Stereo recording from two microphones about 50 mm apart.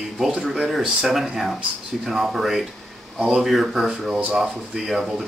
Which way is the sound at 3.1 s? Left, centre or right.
Centre.